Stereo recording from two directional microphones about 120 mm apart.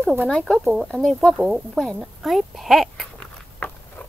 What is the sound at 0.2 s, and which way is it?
Speech, 10° left (ahead or behind).